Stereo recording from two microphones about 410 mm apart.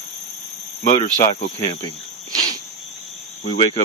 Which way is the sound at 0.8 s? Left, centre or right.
Centre.